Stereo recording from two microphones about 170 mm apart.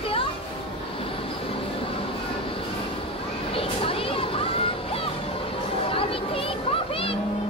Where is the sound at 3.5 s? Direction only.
35° left (ahead or behind).